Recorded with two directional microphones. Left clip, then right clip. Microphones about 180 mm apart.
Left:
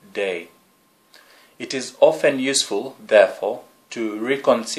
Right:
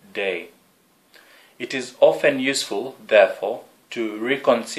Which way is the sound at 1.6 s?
25° left (ahead or behind).